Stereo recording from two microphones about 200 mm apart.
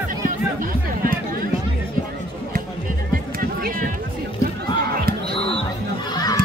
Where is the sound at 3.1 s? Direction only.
45° right (ahead or behind).